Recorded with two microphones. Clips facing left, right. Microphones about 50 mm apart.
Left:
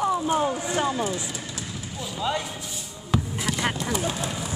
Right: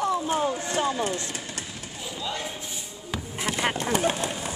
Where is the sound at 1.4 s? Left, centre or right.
Right.